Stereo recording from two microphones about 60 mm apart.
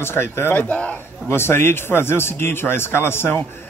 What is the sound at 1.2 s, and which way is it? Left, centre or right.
A man's voice, left.